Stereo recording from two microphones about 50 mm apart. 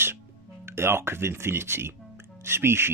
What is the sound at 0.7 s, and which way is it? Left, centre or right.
Speech, right.